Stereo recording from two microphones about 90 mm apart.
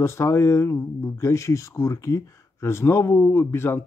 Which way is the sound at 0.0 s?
30° left (ahead or behind).